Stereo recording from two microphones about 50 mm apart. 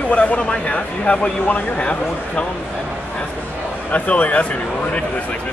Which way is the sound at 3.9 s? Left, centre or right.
Left.